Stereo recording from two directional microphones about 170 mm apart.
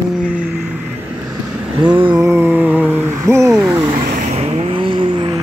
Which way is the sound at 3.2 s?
15° right (ahead or behind).